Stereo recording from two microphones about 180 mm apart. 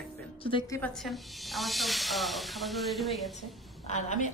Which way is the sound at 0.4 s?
25° left (ahead or behind).